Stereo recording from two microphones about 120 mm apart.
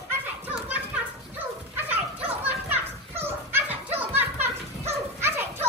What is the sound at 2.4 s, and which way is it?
Children playing, 15° right (ahead or behind).